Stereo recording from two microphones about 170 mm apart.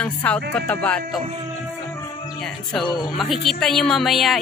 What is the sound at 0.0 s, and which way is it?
Music, 5° left (ahead or behind).